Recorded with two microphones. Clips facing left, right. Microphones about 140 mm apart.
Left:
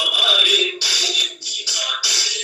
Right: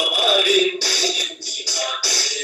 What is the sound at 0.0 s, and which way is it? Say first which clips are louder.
Music: right 6 dB; 40° right (ahead or behind).